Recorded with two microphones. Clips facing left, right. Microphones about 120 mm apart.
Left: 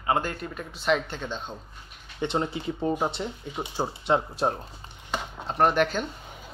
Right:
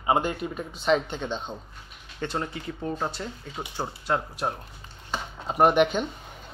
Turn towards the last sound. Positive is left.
turn(degrees=-5)  # may be behind; listen again after turning